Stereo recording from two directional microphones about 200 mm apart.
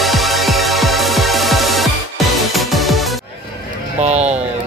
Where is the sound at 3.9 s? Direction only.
35° right (ahead or behind).